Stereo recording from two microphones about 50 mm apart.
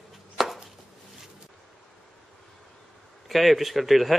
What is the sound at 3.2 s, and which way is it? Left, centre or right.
Speech, centre.